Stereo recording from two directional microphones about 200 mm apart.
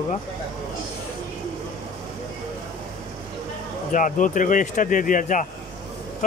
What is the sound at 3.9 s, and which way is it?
Speech, 40° left (ahead or behind).